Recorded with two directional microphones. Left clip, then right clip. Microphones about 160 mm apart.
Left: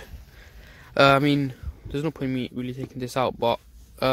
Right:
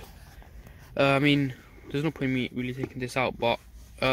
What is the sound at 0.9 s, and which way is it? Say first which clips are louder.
Speech: left 5 dB; 15° left (ahead or behind).